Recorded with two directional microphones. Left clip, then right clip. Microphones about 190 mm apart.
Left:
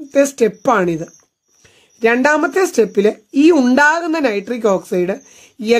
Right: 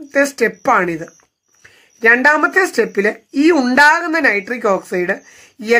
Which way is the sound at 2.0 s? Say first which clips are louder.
Right 2 dB; 60° left (ahead or behind).